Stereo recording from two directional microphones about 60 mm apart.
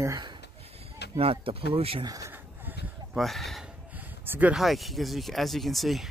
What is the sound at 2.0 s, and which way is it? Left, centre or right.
Speech, right.